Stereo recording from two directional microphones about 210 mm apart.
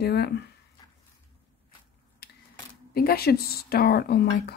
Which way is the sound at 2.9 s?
45° left (ahead or behind).